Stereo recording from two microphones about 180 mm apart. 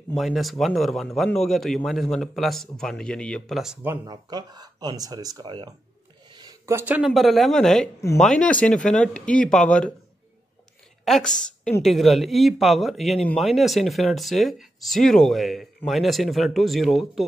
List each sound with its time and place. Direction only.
0.1 s speech: centre (ahead or behind); by 5.8 s 25° right (ahead or behind)
6.3 s a sound: 20° right (ahead or behind)
7.0 s speech: centre (ahead or behind)
11.1 s a woman's voice: centre (ahead or behind)